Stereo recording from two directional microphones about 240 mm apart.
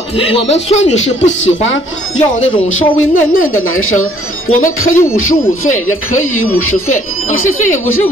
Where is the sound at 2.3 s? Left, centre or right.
Left.